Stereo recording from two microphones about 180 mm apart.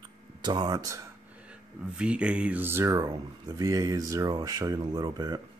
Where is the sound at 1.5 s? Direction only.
5° right (ahead or behind).